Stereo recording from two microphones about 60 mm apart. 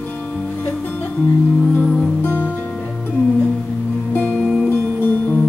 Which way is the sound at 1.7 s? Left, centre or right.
Left.